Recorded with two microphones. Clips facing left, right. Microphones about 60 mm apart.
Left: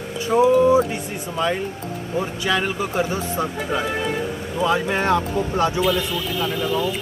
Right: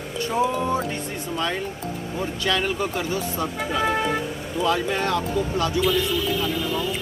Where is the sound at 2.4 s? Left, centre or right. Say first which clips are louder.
Even; centre.